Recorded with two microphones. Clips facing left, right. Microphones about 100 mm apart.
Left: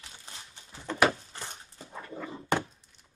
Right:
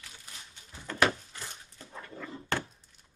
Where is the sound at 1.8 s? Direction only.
15° left (ahead or behind).